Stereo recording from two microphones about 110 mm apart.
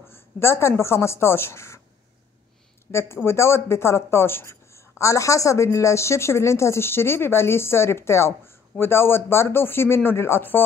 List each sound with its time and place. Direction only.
0.1 s speech: 25° left (ahead or behind)
2.9 s a man's voice: 25° left (ahead or behind)